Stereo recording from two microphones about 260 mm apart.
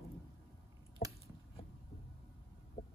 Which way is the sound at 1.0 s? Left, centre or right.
Left.